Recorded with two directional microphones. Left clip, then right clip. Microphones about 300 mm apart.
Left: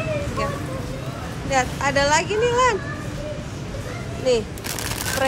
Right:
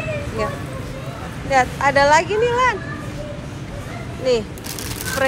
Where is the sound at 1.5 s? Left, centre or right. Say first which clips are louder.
Right 5 dB; centre.